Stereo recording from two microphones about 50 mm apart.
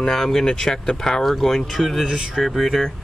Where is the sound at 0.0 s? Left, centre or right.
Centre.